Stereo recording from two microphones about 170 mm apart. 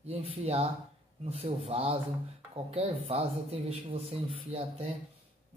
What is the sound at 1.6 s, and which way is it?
Speech, 35° right (ahead or behind).